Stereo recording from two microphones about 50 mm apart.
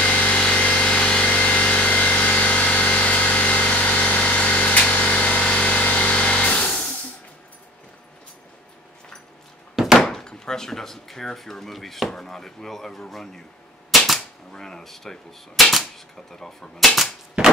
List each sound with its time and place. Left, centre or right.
0.0 s power tool: left
0.4 s vehicle: left
9.8 s thunk: centre
10.0 s speech: centre
13.8 s cap gun: centre
14.5 s a sound: centre